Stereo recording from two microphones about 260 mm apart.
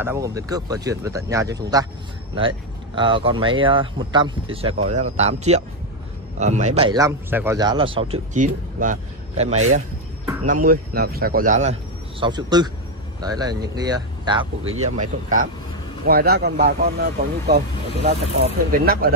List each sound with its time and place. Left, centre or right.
0.0 s speech: centre; by 8.9 s right
10.4 s speech: right
12.2 s speech: centre
14.6 s speech: right
15.0 s speech: right